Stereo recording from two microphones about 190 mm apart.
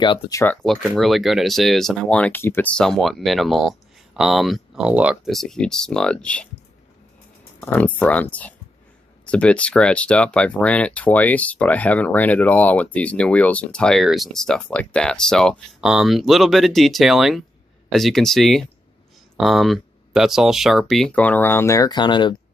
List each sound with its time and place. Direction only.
0.0 s speech: 20° left (ahead or behind)
0.6 s speech: centre (ahead or behind)
7.6 s speech: 10° left (ahead or behind); by 22.3 s 25° left (ahead or behind)